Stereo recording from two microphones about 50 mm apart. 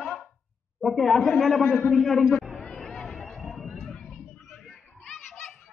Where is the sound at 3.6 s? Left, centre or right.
Centre.